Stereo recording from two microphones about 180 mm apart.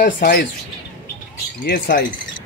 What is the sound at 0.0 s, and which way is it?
Speech, 55° left (ahead or behind).